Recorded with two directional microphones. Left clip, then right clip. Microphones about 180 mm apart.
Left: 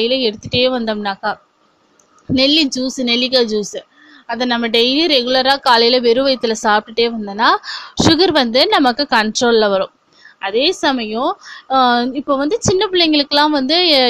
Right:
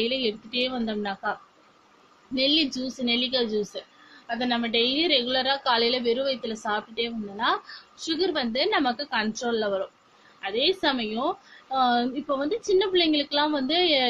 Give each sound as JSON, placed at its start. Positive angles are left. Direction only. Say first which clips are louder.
{"t": 0.0, "sound": "a woman's voice", "louder": "left 10 dB", "side_deg": 50}
{"t": 2.3, "sound": "a woman's voice", "louder": "left 10 dB", "side_deg": 60}